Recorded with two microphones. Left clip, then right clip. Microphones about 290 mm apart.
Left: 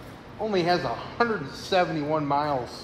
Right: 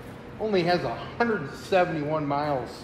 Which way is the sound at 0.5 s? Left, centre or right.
Left.